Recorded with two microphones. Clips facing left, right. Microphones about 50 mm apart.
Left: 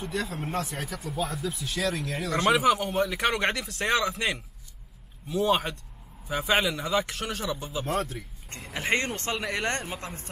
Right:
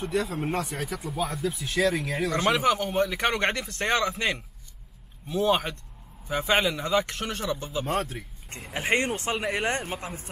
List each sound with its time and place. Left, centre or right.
0.0 s a man's voice: centre